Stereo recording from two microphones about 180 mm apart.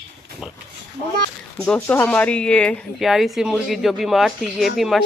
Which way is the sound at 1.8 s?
10° left (ahead or behind).